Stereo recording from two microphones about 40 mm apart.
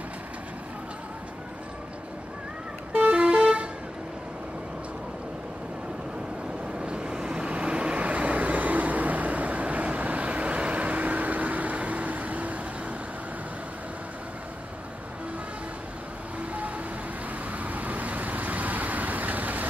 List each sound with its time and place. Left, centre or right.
2.9 s vehicle: right
6.8 s vehicle: right
16.3 s vehicle: right